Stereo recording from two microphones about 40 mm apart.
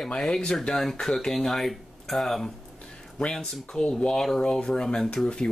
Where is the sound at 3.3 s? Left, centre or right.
Centre.